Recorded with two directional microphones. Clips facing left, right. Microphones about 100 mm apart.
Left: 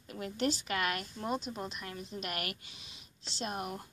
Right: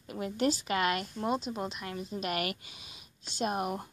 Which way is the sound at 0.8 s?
20° right (ahead or behind).